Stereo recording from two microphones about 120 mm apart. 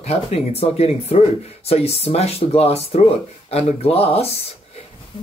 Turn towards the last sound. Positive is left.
turn(degrees=55)  # may be behind; listen again after turning